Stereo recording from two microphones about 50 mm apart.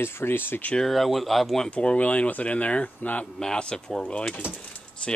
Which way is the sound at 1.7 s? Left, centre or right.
Left.